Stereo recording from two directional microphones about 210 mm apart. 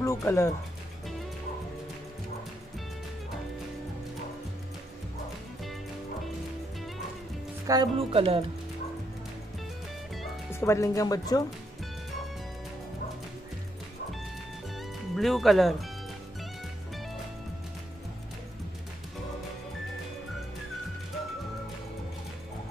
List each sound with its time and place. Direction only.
0.0 s music: 15° left (ahead or behind)
7.6 s speech: 20° right (ahead or behind)
10.5 s speech: 15° left (ahead or behind)
14.8 s music: centre (ahead or behind)